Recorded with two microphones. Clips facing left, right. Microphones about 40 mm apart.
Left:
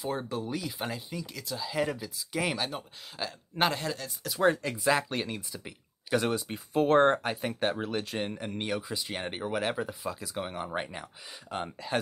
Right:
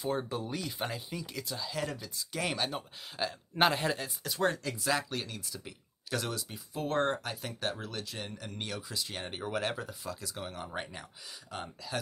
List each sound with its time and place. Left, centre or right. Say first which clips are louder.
0.0 s speech: left 1 dB; centre
1.7 s speech: left 10 dB; centre
3.8 s speech: right 2 dB; right
4.2 s speech: left 7 dB; centre
4.6 s speech: left 5 dB; centre
6.2 s speech: left 8 dB; left
6.7 s speech: left 8 dB; left; by 11.1 s centre
11.5 s speech: left 7 dB; left